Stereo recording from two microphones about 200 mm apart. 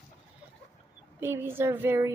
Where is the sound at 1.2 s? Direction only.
10° right (ahead or behind).